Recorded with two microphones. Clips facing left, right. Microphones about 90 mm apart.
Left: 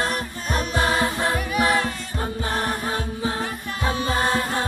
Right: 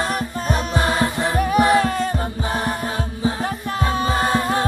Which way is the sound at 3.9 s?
40° right (ahead or behind).